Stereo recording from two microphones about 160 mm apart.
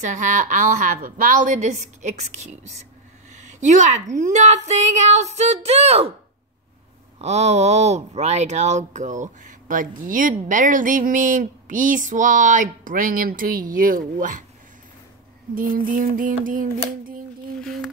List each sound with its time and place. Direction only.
0.0 s a woman's voice: 50° right (ahead or behind)
7.2 s speech: 45° right (ahead or behind); by 14.4 s 60° right (ahead or behind)
15.5 s speech: 60° right (ahead or behind)